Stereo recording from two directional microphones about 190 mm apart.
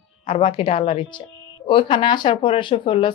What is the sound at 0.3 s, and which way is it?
Speech, 30° left (ahead or behind).